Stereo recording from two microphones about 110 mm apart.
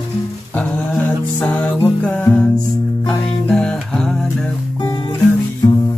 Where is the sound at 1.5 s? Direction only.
15° left (ahead or behind).